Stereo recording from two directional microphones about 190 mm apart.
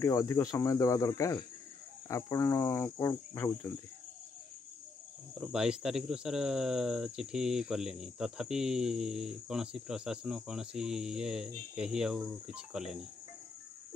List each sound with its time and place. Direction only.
0.0 s cricket: 15° left (ahead or behind)
5.4 s speech: 5° right (ahead or behind)